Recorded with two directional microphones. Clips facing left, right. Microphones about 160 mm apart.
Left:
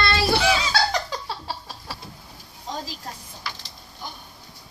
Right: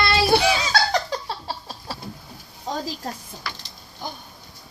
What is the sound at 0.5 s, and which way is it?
Laughter, 45° right (ahead or behind).